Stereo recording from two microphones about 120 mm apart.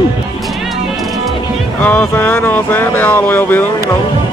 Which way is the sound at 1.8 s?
15° left (ahead or behind).